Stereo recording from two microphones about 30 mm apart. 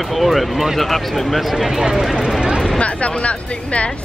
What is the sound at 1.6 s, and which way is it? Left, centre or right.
Speech, centre.